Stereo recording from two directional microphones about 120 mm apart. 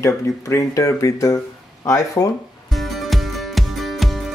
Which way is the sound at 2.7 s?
Centre (ahead or behind).